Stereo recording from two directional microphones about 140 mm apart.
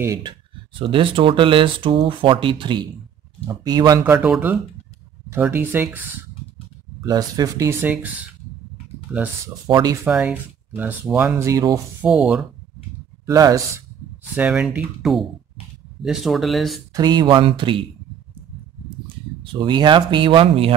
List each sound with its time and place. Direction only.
0.0 s speech: 25° right (ahead or behind)
0.7 s speech: 40° right (ahead or behind)
4.0 s speech: 10° right (ahead or behind)
7.0 s speech: 25° right (ahead or behind)
7.8 s speech: 10° right (ahead or behind)
9.7 s speech: 30° right (ahead or behind)
10.0 s speech: 10° right (ahead or behind)
11.3 s speech: 25° right (ahead or behind)
12.0 s speech: 5° right (ahead or behind)
13.2 s speech: 25° right (ahead or behind)
14.3 s speech: 5° right (ahead or behind)
16.9 s speech: 30° right (ahead or behind)
19.4 s speech: 30° right (ahead or behind)